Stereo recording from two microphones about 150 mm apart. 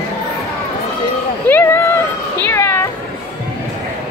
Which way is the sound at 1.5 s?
15° left (ahead or behind).